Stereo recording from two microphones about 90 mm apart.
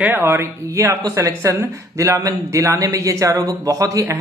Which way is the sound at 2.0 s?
35° right (ahead or behind).